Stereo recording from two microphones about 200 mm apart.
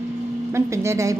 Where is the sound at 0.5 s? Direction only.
15° right (ahead or behind).